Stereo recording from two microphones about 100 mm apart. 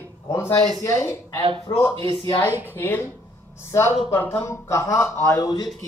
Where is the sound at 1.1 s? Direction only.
35° left (ahead or behind).